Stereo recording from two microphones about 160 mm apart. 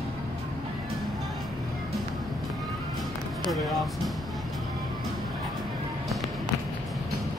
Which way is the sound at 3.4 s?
Centre (ahead or behind).